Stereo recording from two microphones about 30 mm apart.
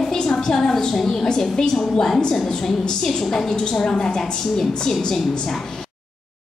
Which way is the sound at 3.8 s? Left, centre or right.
Left.